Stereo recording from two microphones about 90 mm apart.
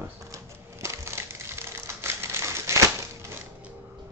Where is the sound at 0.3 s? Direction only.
35° right (ahead or behind).